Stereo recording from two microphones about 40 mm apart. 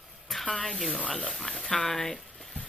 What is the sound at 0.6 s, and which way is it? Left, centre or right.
Speech, centre.